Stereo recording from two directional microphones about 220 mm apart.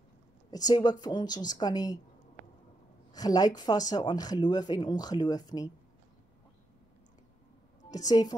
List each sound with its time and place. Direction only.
0.5 s speech: 15° left (ahead or behind)
3.1 s speech: 15° left (ahead or behind)
7.9 s speech: 15° left (ahead or behind)